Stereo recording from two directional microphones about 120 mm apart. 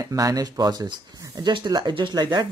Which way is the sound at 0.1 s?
30° right (ahead or behind).